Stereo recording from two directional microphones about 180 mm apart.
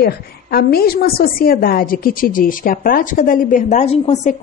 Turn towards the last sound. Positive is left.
turn(degrees=35)  # may be behind; listen again after turning